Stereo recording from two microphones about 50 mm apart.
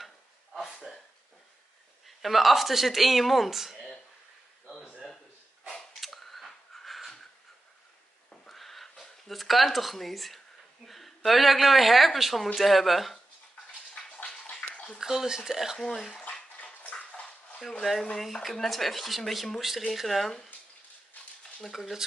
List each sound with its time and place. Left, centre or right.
0.0 s a sound: centre
2.0 s speech: centre
5.9 s a sound: centre
8.5 s a sound: centre
9.3 s speech: centre
14.0 s bathtub: centre
15.0 s speech: centre
16.3 s bathtub: centre
17.6 s speech: centre
21.7 s speech: centre